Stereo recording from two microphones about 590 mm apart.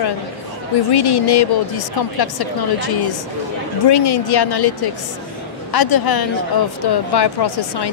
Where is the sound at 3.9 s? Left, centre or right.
Left.